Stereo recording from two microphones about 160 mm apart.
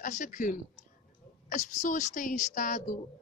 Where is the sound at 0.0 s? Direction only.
55° left (ahead or behind).